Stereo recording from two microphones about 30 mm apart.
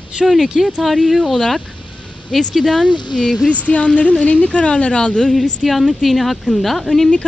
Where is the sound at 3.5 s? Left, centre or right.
Left.